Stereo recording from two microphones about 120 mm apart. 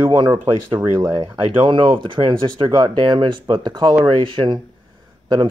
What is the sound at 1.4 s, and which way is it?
Speech, 45° right (ahead or behind).